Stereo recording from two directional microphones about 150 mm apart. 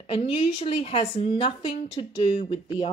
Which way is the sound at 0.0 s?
40° left (ahead or behind).